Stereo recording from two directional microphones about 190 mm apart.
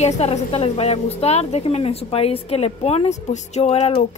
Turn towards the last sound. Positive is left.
turn(degrees=35)  # may be behind; listen again after turning